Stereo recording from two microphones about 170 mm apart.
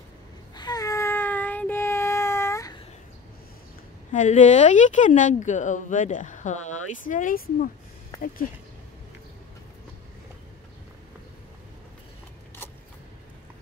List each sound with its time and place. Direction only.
0.6 s child singing: 25° left (ahead or behind)
4.1 s speech: 45° left (ahead or behind)